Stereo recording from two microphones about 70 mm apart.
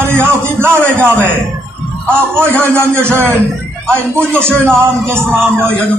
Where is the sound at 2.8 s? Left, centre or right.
Right.